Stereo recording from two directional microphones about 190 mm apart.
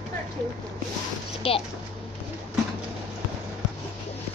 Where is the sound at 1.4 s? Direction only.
30° left (ahead or behind).